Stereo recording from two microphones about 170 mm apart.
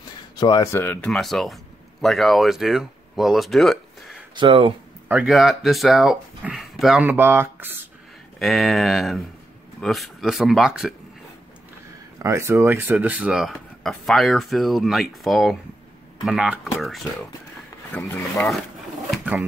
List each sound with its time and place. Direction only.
0.4 s speech: 20° left (ahead or behind)
1.1 s speech: centre (ahead or behind)
4.4 s speech: 30° right (ahead or behind)
5.0 s speech: 5° right (ahead or behind)
7.1 s speech: 15° right (ahead or behind)
8.4 s speech: centre (ahead or behind)
12.2 s speech: 15° right (ahead or behind); by 18.1 s 10° left (ahead or behind)
19.0 s a sound: 5° right (ahead or behind)